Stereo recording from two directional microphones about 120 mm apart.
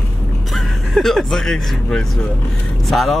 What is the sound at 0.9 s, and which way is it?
Speech, centre (ahead or behind).